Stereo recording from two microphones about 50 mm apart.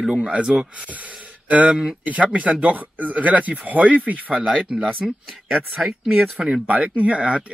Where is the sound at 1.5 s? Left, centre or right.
Right.